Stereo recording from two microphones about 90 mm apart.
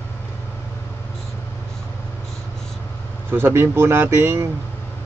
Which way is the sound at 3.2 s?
25° right (ahead or behind).